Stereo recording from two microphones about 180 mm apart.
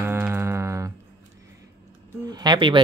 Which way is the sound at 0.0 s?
15° right (ahead or behind).